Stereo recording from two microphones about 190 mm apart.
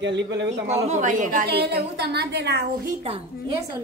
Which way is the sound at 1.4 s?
60° right (ahead or behind).